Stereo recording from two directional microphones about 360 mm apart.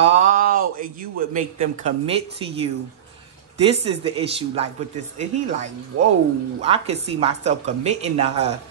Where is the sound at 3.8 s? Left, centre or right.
Centre.